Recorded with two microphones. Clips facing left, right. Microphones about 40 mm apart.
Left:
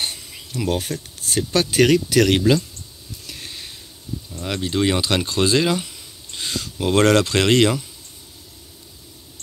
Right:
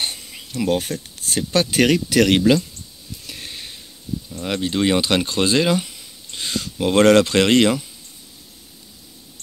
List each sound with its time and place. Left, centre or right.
0.5 s speech: right
3.3 s a sound: right
4.4 s speech: centre
5.0 s speech: right